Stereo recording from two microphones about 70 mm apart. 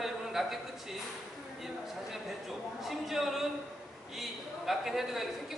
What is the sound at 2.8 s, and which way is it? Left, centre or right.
A woman's voice, centre.